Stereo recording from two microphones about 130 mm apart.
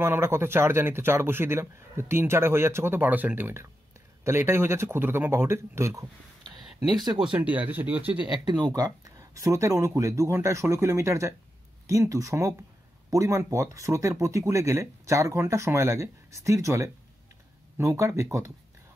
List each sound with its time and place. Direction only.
0.0 s speech: 20° right (ahead or behind)
7.3 s speech: 10° right (ahead or behind)
8.5 s speech: 35° right (ahead or behind)